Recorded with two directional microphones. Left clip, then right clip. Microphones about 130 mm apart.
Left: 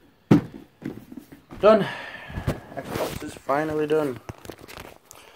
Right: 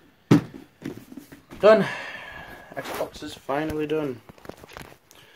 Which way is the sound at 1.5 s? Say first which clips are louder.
Right 1 dB; centre (ahead or behind).